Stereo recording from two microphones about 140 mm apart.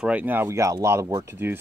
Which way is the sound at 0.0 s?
10° right (ahead or behind).